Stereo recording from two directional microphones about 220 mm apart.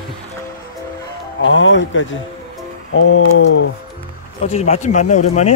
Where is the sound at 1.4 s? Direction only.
60° left (ahead or behind).